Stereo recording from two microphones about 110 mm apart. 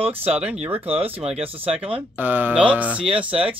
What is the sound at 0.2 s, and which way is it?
Speech, 15° right (ahead or behind).